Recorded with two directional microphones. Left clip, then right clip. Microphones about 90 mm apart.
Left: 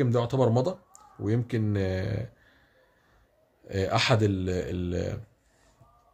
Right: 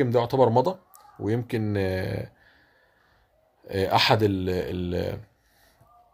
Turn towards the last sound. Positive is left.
turn(degrees=20)  # may be behind; listen again after turning